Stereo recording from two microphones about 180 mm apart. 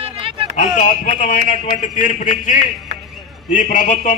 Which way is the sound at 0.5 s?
45° left (ahead or behind).